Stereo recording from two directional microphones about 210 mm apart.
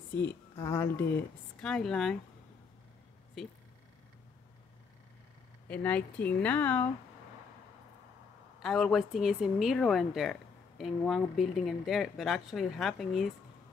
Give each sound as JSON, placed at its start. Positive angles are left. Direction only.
{"t": 0.1, "sound": "speech", "side_deg": 10}
{"t": 5.7, "sound": "speech", "side_deg": 5}
{"t": 8.5, "sound": "a woman's voice", "side_deg": 0}